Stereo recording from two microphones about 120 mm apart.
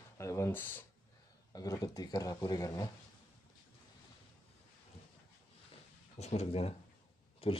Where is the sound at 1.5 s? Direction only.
30° left (ahead or behind).